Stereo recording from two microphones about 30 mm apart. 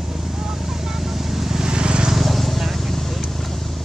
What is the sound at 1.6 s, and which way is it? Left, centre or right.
Vehicle, right.